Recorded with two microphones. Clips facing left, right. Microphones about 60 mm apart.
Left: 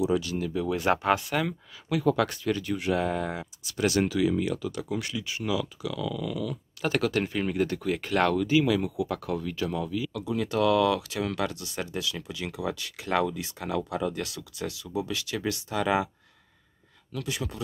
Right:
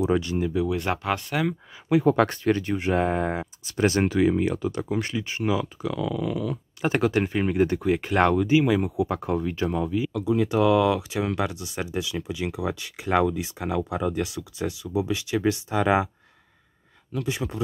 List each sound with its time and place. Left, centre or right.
0.0 s speech: right
0.7 s speech: centre
1.9 s speech: right
2.1 s speech: right
6.8 s speech: right
17.1 s speech: right